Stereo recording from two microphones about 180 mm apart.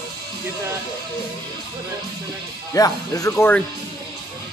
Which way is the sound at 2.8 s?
20° left (ahead or behind).